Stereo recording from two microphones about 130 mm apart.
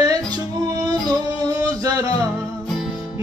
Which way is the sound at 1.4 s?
25° right (ahead or behind).